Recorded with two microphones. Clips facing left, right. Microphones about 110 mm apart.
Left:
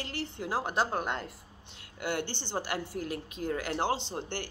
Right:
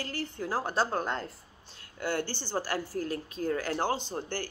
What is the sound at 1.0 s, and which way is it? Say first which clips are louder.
Speech: right 1 dB; 35° right (ahead or behind).